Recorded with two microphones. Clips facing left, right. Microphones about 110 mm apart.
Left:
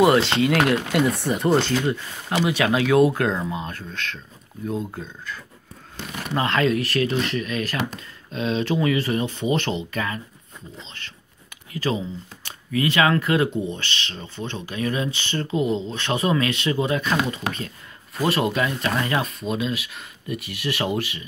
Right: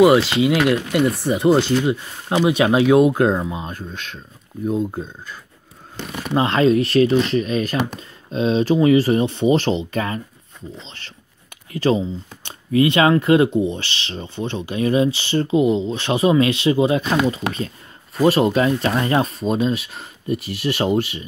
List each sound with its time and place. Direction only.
0.0 s speech: 5° right (ahead or behind)
2.2 s speech: 25° right (ahead or behind)
9.9 s speech: 35° right (ahead or behind)
11.7 s speech: 25° right (ahead or behind)